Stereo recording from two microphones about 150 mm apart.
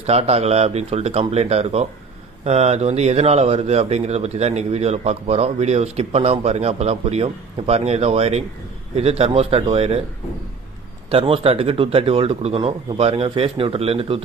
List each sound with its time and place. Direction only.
0.0 s speech: 45° right (ahead or behind)
11.1 s speech: 40° right (ahead or behind)